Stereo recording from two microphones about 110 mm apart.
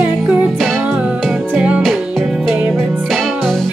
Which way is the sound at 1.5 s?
10° right (ahead or behind).